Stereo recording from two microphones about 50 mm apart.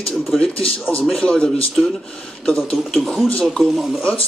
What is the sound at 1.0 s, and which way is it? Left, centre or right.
Speech, centre.